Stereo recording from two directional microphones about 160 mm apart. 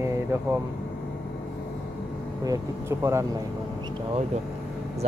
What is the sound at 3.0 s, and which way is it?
Mantra, 15° right (ahead or behind).